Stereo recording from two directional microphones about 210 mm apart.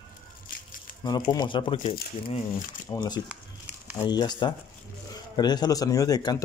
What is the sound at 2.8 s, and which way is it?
Speech, 20° left (ahead or behind).